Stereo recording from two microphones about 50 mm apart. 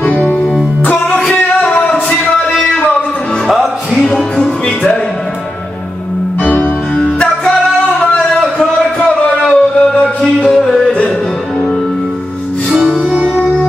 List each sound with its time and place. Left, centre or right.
0.8 s music: left
2.0 s music: centre
3.4 s music: centre
6.4 s music: left
7.0 s music: centre
8.0 s a sound: centre
9.5 s music: centre
10.5 s music: centre
13.1 s music: centre